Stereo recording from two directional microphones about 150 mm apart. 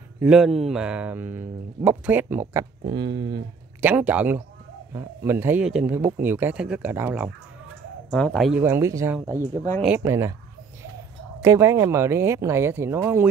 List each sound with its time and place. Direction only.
0.2 s speech: 5° right (ahead or behind)
2.8 s speech: 30° right (ahead or behind)
3.8 s speech: 10° right (ahead or behind)
8.1 s speech: 5° left (ahead or behind)
8.5 s speech: 15° right (ahead or behind)
11.4 s speech: 20° right (ahead or behind)